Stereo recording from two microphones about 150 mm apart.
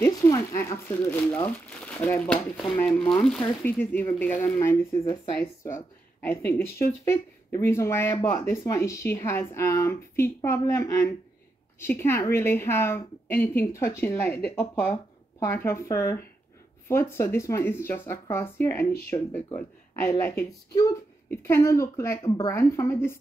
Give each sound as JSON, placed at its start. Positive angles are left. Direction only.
{"t": 0.0, "sound": "speech", "side_deg": 20}